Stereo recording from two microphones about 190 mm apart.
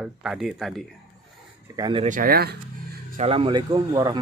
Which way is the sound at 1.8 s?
25° right (ahead or behind).